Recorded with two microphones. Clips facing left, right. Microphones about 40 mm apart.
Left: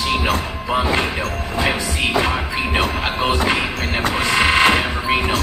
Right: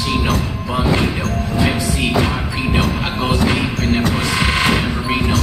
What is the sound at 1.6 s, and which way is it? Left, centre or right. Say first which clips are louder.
Train: right 1 dB; centre.